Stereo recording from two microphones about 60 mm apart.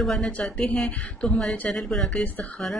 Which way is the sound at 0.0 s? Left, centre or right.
Centre.